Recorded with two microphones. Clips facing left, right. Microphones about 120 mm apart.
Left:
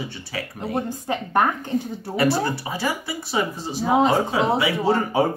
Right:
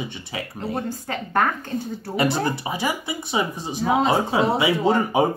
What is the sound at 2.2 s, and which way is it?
Speech, 20° right (ahead or behind).